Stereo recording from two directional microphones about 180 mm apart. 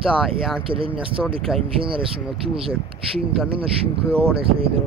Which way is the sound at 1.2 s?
Centre (ahead or behind).